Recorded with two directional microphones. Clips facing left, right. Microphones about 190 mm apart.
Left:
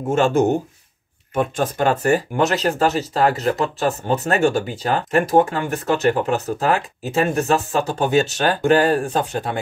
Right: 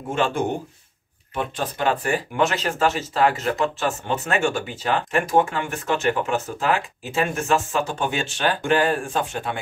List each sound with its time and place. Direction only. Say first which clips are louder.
0.1 s speech: left 6 dB; 45° left (ahead or behind)